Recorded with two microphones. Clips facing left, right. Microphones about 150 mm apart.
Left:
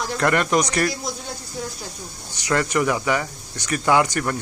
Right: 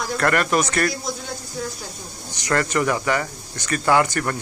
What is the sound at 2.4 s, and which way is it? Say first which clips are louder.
Speech: even; 15° left (ahead or behind).